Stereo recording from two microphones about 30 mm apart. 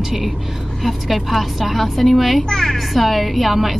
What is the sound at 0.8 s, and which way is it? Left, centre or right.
A woman's voice, centre.